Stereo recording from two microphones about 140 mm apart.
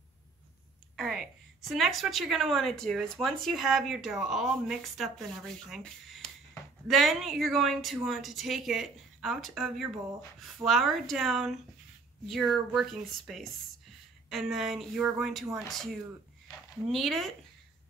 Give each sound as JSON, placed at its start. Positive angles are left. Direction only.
{"t": 0.9, "sound": "a woman's voice", "side_deg": 0}